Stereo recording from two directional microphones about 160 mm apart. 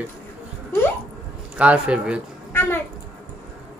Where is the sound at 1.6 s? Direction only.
5° right (ahead or behind).